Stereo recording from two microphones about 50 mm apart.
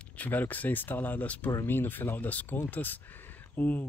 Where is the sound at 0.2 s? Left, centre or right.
Left.